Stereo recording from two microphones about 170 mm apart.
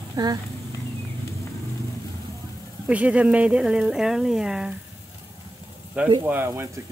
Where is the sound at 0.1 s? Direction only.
25° right (ahead or behind).